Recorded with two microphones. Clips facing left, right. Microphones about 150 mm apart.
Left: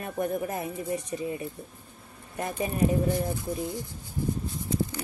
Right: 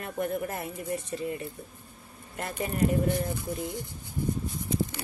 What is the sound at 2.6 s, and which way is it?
Speech, 20° left (ahead or behind).